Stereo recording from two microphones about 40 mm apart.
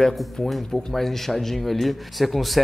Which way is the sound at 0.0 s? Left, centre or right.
Centre.